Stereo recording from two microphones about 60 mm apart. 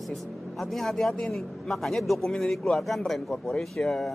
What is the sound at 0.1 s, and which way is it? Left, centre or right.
A man's voice, centre.